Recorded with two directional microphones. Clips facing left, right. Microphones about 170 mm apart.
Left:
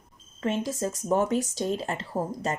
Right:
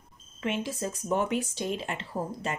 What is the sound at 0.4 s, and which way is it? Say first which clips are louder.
A woman's voice: left 3 dB; 40° left (ahead or behind).